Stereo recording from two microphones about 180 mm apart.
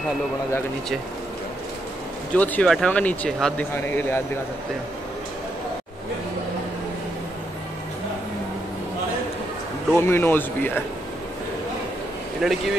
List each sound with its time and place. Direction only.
2.3 s speech: 10° left (ahead or behind)
9.9 s speech: 15° left (ahead or behind)
12.4 s speech: centre (ahead or behind)